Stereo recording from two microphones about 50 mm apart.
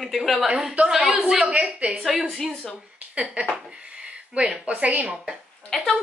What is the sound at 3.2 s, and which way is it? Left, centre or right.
Speech, centre.